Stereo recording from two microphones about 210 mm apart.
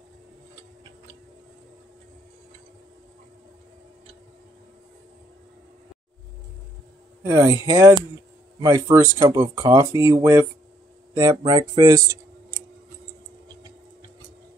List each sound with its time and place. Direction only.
7.2 s speech: 15° right (ahead or behind)